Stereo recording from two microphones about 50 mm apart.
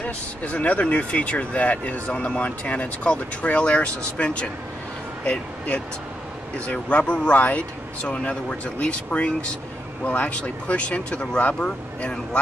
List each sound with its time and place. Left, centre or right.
0.0 s speech: left